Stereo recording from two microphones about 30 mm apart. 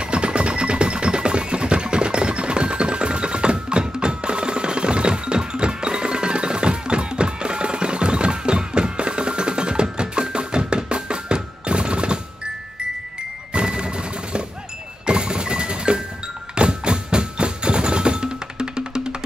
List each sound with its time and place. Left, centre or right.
0.0 s music: right
13.5 s a sound: right
15.0 s music: right